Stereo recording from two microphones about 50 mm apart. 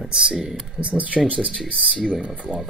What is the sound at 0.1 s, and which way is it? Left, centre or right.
Speech, centre.